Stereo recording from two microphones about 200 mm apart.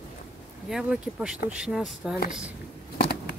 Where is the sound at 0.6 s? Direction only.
5° right (ahead or behind).